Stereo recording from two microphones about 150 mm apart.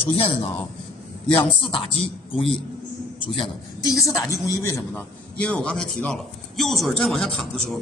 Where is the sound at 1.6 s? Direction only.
35° left (ahead or behind).